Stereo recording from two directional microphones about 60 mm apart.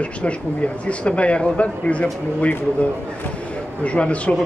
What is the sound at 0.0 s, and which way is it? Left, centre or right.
Speech, left.